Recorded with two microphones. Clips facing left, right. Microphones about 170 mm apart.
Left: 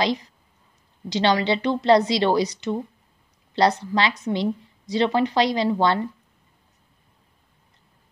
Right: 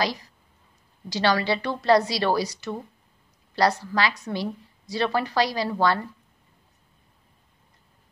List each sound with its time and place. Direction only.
0.0 s a woman's voice: 20° left (ahead or behind)